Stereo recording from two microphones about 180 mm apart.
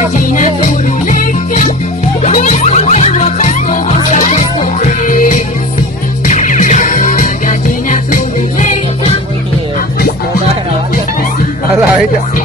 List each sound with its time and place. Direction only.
0.3 s music: 45° left (ahead or behind)